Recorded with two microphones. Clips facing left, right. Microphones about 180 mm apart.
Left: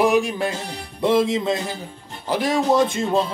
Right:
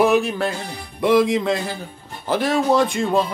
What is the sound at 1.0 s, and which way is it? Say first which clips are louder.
Music: right 2 dB; 25° left (ahead or behind).